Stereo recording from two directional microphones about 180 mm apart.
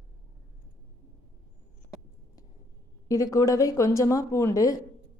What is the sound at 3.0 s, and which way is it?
A woman's voice, 20° left (ahead or behind).